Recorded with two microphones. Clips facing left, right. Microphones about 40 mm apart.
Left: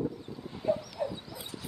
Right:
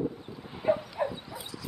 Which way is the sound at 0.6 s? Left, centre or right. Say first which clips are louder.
Right 3 dB; right.